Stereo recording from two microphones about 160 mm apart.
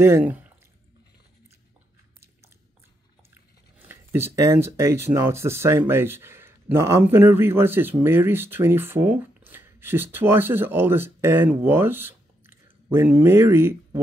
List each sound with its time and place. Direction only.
0.0 s speech: 15° right (ahead or behind)
3.8 s speech: 15° right (ahead or behind)